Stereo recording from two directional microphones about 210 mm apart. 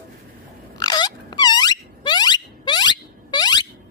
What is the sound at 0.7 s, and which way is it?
Wail, 20° left (ahead or behind).